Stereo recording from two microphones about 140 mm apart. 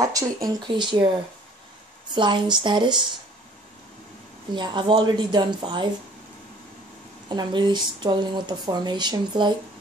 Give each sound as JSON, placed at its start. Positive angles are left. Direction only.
{"t": 0.0, "sound": "speech", "side_deg": -25}
{"t": 2.1, "sound": "speech", "side_deg": -35}
{"t": 4.6, "sound": "speech", "side_deg": -35}
{"t": 7.2, "sound": "speech", "side_deg": -30}